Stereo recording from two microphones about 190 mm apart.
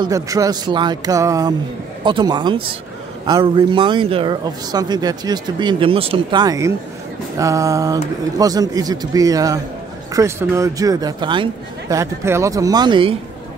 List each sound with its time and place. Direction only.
0.0 s speech: 20° right (ahead or behind)